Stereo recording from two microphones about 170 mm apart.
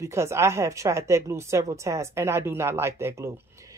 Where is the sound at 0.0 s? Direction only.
15° right (ahead or behind).